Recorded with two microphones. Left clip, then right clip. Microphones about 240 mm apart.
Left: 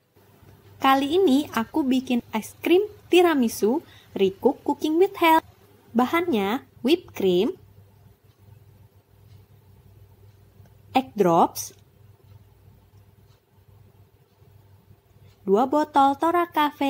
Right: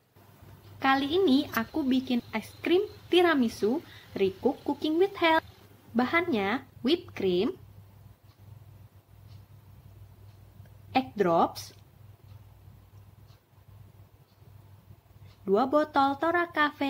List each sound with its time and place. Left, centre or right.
0.7 s a woman's voice: left
10.9 s speech: centre
15.4 s speech: centre